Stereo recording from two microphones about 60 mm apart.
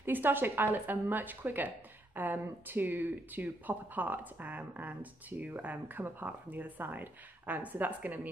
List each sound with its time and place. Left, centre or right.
0.0 s a woman's voice: right